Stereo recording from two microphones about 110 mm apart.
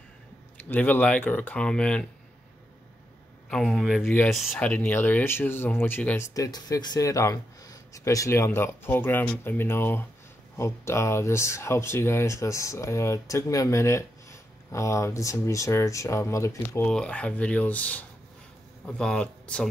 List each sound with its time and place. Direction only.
0.7 s speech: 15° left (ahead or behind)
3.4 s a man's voice: 5° left (ahead or behind)
4.0 s speech: 15° left (ahead or behind)
4.3 s a man's voice: centre (ahead or behind)
4.6 s speech: 15° left (ahead or behind)
6.3 s speech: 30° left (ahead or behind)
16.8 s speech: 10° left (ahead or behind)